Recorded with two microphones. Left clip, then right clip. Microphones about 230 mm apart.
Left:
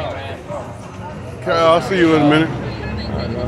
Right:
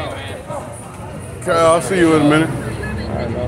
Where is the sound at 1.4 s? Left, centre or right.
Centre.